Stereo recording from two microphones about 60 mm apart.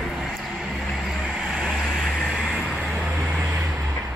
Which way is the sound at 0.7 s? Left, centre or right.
Centre.